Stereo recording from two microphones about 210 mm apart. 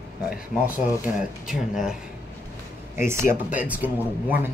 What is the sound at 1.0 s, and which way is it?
Speech, centre (ahead or behind).